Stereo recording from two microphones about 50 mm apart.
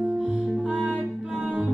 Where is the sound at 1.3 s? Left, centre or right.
Right.